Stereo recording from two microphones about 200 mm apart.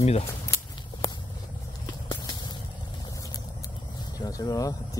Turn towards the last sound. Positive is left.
turn(degrees=15)  # may be behind; listen again after turning